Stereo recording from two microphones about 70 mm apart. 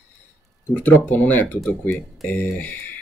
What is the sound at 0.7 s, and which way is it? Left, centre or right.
Speech, left.